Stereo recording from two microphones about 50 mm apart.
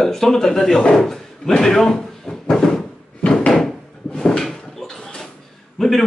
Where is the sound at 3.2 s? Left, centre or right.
Centre.